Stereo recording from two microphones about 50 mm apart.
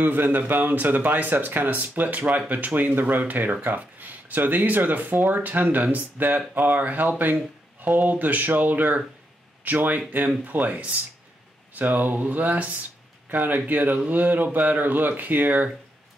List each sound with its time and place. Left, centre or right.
0.0 s speech: right